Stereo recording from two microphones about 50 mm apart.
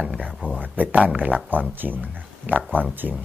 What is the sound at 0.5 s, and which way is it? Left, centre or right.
Speech, right.